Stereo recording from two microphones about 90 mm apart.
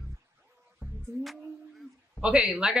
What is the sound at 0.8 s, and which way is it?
Music, 25° right (ahead or behind).